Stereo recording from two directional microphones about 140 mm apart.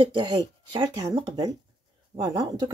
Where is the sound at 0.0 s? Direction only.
35° right (ahead or behind).